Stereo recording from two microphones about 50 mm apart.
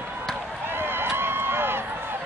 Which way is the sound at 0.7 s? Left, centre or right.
Right.